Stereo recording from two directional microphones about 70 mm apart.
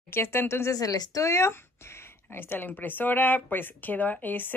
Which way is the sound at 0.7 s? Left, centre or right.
Left.